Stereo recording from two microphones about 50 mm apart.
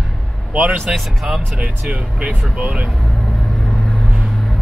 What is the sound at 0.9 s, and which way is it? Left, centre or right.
Speech, centre.